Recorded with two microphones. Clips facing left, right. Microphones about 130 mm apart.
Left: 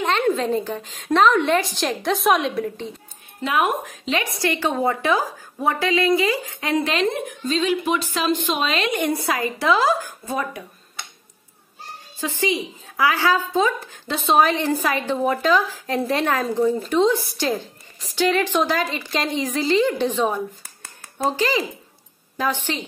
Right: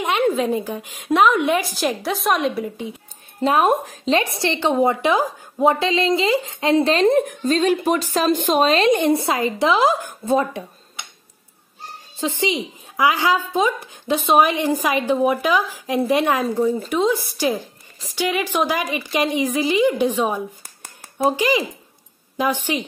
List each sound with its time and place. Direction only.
0.0 s a woman's voice: 10° right (ahead or behind)
3.3 s a woman's voice: 35° right (ahead or behind)
12.2 s a woman's voice: 20° right (ahead or behind)